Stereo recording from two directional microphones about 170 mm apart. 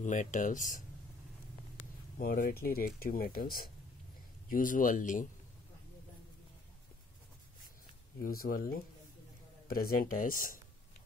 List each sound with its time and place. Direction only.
0.0 s speech: 45° left (ahead or behind)
2.1 s speech: 55° left (ahead or behind)
8.2 s speech: 60° left (ahead or behind)